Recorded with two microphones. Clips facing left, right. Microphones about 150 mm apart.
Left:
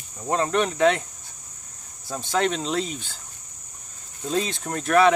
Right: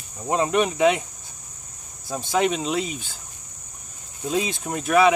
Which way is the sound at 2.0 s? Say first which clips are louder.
Right 2 dB; 10° right (ahead or behind).